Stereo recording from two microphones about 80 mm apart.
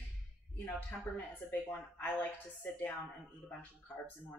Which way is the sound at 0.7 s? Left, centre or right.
Left.